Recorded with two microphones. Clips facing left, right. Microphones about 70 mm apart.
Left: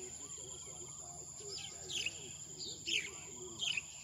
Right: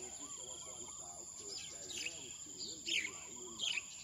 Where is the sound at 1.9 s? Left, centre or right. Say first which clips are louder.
Left 5 dB; right.